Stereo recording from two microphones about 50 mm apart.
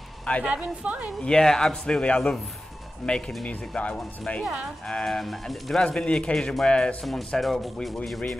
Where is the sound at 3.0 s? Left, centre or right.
Centre.